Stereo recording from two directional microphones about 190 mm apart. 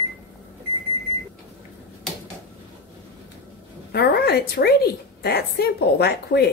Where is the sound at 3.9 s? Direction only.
55° left (ahead or behind).